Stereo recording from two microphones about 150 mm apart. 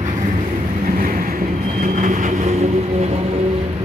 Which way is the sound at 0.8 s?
70° right (ahead or behind).